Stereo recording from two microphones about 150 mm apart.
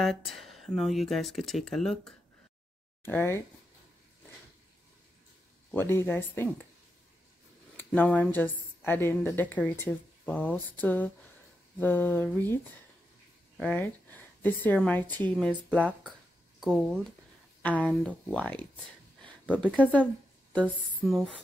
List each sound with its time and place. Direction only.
0.0 s speech: centre (ahead or behind)
3.0 s speech: 15° left (ahead or behind)
5.7 s a woman's voice: 15° left (ahead or behind)
7.7 s a woman's voice: 10° left (ahead or behind)
13.6 s a woman's voice: 10° left (ahead or behind)
21.0 s rub: centre (ahead or behind)